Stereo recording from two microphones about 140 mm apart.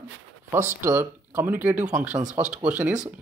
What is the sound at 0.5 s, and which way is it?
Speech, 20° right (ahead or behind).